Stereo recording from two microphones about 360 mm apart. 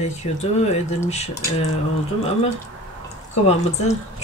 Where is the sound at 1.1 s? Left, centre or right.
Centre.